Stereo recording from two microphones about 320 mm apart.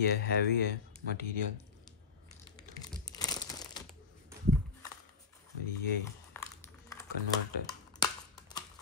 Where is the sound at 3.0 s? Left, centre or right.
Centre.